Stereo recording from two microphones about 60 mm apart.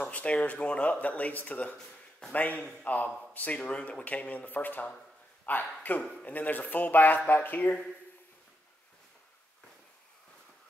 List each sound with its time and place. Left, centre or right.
0.0 s a man's voice: left